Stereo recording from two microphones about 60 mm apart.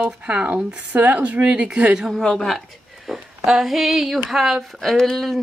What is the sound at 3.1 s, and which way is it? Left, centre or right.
Speech, centre.